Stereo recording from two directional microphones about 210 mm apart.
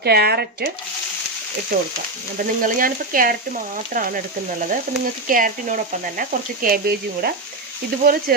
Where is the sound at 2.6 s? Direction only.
40° right (ahead or behind).